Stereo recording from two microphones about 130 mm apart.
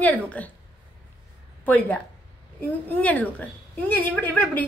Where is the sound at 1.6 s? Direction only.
10° left (ahead or behind).